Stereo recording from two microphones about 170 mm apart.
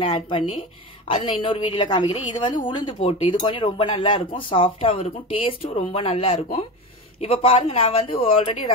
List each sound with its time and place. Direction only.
0.0 s speech: 30° left (ahead or behind)